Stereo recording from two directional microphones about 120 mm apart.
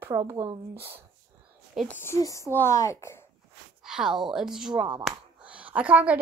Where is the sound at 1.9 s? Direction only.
20° left (ahead or behind).